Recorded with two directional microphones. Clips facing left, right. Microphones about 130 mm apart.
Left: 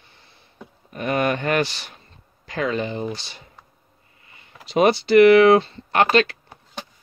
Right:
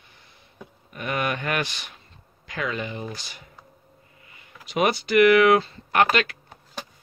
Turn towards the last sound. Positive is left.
turn(degrees=30)  # may be behind; listen again after turning